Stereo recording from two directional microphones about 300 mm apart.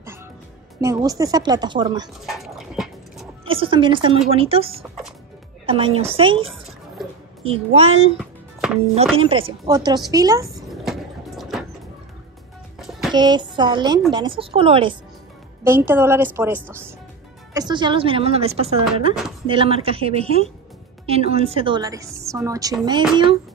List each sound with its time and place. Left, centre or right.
0.7 s a woman's voice: centre
2.2 s dog: centre
3.4 s a woman's voice: centre
7.4 s a woman's voice: centre
8.2 s music: centre
9.1 s a woman's voice: centre
10.7 s a sound: centre
12.7 s music: centre
13.1 s a woman's voice: centre